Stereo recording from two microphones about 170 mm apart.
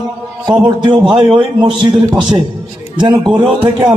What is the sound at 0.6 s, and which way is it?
A man's voice, 30° right (ahead or behind).